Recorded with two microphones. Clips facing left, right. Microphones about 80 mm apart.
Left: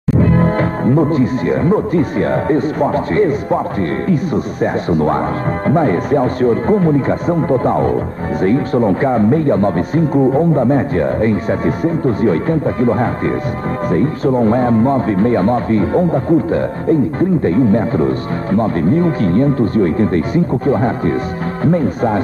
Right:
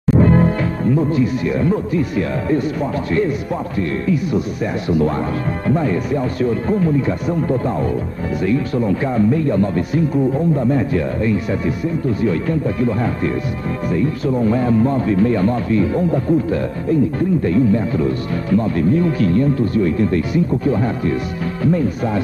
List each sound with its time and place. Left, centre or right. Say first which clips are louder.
0.4 s speech: left 3 dB; left